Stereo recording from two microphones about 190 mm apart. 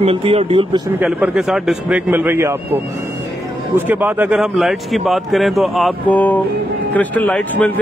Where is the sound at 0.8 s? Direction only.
10° right (ahead or behind).